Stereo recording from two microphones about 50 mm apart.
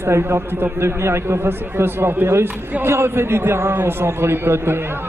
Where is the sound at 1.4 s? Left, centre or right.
Right.